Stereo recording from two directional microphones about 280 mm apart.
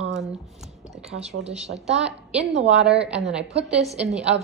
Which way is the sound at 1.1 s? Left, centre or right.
Right.